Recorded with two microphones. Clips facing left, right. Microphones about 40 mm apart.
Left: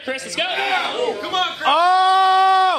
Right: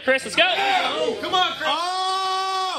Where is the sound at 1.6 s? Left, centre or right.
Centre.